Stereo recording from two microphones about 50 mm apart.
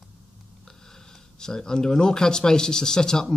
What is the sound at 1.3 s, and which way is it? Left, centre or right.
Speech, centre.